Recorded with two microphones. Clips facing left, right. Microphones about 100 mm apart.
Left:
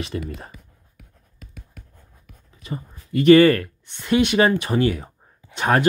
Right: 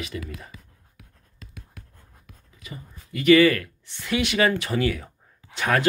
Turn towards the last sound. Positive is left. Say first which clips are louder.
# left 4 dB
turn(degrees=20)  # may be behind; listen again after turning